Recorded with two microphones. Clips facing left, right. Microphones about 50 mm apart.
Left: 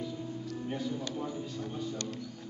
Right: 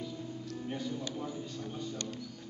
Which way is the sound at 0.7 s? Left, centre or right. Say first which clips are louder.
Left 2 dB; centre.